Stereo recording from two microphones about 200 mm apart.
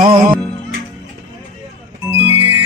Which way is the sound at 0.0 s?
25° right (ahead or behind).